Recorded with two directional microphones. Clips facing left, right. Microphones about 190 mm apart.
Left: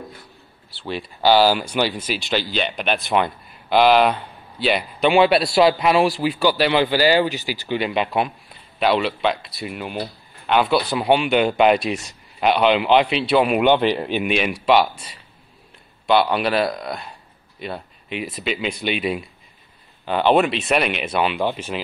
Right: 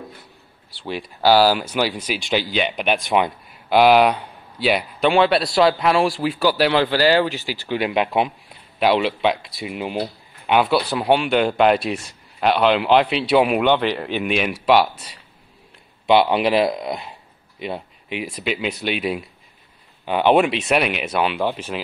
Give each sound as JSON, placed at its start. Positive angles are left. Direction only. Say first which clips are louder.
{"t": 0.7, "sound": "speech", "louder": "even", "side_deg": -15}
{"t": 5.0, "sound": "speech", "louder": "left 1 dB", "side_deg": 5}
{"t": 9.9, "sound": "speech", "louder": "right 3 dB", "side_deg": -10}
{"t": 13.6, "sound": "speech", "louder": "left 2 dB", "side_deg": 10}
{"t": 14.2, "sound": "speech", "louder": "right 2 dB", "side_deg": 0}
{"t": 16.1, "sound": "speech", "louder": "right 2 dB", "side_deg": -20}